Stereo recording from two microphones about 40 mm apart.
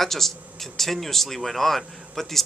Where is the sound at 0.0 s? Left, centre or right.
Centre.